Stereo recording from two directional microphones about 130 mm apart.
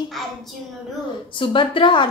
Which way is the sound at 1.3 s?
40° left (ahead or behind).